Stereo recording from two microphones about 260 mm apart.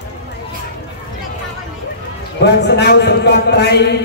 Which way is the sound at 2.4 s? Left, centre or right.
Left.